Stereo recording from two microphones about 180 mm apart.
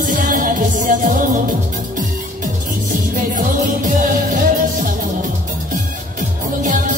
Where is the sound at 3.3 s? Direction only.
45° right (ahead or behind).